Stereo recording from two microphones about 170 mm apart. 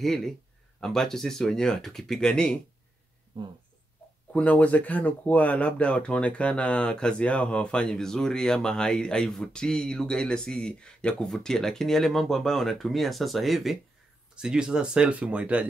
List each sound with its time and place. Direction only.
0.0 s speech: centre (ahead or behind)
3.3 s speech: 30° right (ahead or behind)
4.3 s speech: 10° left (ahead or behind)